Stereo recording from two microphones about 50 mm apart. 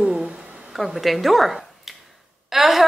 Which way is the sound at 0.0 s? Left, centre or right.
Centre.